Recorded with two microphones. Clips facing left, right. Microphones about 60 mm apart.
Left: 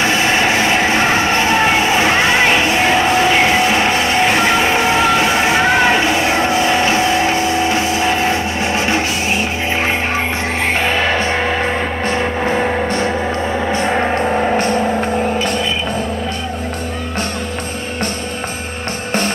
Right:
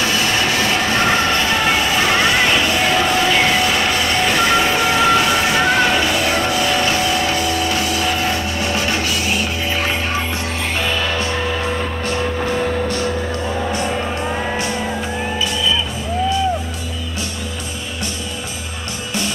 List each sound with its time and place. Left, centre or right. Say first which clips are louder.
0.0 s a sound: left 4 dB; left
11.4 s music: left 4 dB; left
12.1 s music: left 3 dB; left